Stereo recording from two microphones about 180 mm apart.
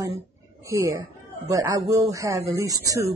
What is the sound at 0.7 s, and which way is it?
Speech, 15° right (ahead or behind).